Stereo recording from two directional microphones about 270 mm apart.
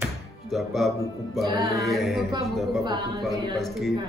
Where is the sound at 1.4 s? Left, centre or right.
Centre.